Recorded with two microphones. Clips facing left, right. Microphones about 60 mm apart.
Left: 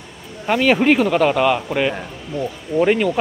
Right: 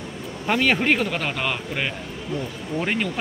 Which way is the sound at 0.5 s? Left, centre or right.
Centre.